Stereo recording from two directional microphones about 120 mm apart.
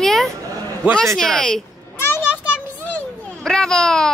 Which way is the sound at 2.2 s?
10° right (ahead or behind).